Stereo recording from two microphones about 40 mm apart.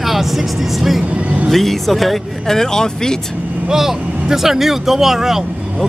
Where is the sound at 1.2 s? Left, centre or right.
Right.